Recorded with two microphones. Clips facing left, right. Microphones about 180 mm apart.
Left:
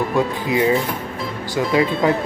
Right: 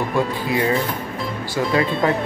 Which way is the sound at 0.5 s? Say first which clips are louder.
Left 2 dB; 15° left (ahead or behind).